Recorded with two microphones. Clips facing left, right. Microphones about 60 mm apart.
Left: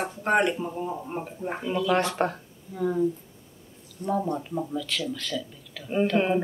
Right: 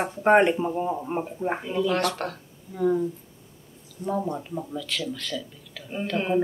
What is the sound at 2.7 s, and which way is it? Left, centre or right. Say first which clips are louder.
Speech: right 1 dB; centre.